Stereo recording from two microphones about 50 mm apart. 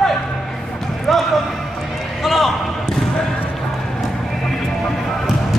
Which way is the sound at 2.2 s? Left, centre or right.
Centre.